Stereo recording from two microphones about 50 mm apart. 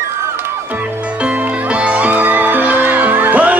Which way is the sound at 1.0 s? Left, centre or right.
Right.